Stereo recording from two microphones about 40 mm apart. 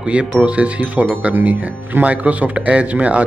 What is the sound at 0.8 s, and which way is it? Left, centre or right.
Speech, right.